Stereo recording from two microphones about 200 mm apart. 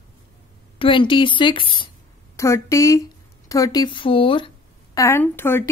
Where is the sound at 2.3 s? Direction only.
15° left (ahead or behind).